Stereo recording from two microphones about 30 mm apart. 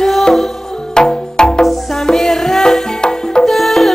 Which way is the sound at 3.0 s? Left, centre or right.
Left.